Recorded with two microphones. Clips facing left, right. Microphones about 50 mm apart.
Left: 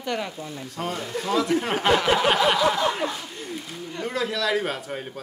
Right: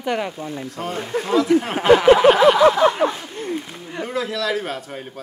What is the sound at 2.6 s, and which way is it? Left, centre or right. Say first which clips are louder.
Speech: right 8 dB; right.